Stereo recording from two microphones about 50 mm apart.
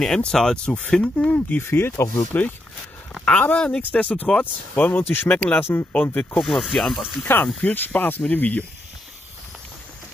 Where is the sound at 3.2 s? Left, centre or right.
Left.